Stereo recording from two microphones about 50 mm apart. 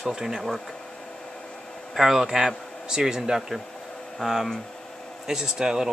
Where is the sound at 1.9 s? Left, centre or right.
Centre.